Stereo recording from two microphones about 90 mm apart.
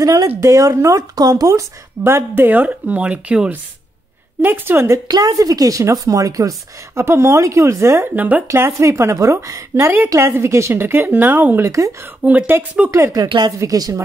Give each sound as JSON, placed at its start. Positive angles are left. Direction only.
{"t": 0.0, "sound": "speech", "side_deg": -45}
{"t": 2.0, "sound": "speech", "side_deg": -25}
{"t": 5.0, "sound": "speech", "side_deg": -50}
{"t": 12.9, "sound": "speech", "side_deg": -40}